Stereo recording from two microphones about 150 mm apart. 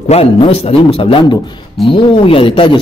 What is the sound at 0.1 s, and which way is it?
Speech, 40° left (ahead or behind).